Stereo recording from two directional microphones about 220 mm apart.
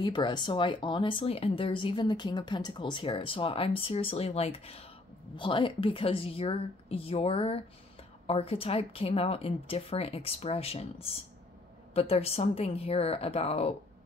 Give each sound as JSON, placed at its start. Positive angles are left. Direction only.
{"t": 0.0, "sound": "speech", "side_deg": 20}